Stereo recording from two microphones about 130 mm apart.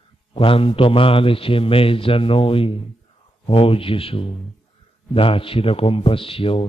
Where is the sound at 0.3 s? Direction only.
45° left (ahead or behind).